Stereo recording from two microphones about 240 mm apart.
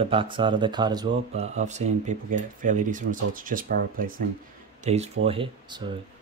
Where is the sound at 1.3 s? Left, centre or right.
Right.